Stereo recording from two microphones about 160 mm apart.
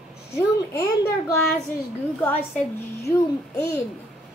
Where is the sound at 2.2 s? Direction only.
15° left (ahead or behind).